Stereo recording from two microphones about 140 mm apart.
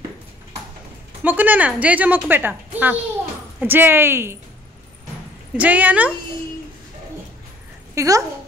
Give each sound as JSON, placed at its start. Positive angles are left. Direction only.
{"t": 1.2, "sound": "a woman's voice", "side_deg": -10}
{"t": 5.6, "sound": "a woman's voice", "side_deg": -10}
{"t": 7.9, "sound": "speech", "side_deg": -20}